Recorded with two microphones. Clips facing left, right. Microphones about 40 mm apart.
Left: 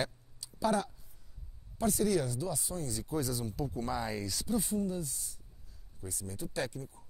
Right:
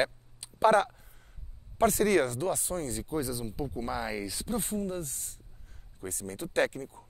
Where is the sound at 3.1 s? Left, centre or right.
Centre.